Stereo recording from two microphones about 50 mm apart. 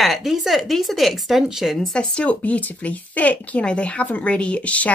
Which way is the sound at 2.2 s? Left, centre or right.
Left.